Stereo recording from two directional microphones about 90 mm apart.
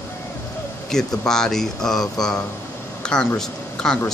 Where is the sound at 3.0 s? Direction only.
10° left (ahead or behind).